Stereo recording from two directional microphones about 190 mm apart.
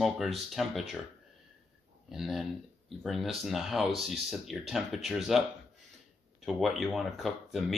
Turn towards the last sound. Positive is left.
turn(degrees=0)  # may be behind; listen again after turning